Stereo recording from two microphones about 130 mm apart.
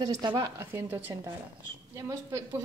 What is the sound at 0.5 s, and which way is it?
A woman's voice, 20° right (ahead or behind).